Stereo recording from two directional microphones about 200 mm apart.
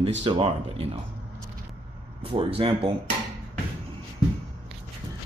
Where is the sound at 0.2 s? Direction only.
25° right (ahead or behind).